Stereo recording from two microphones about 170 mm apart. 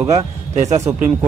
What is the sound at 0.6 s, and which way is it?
Speech, 45° right (ahead or behind).